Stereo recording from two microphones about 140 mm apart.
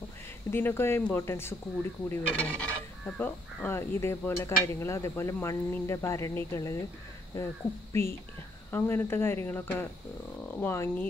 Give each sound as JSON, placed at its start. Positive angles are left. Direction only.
{"t": 0.5, "sound": "speech", "side_deg": 15}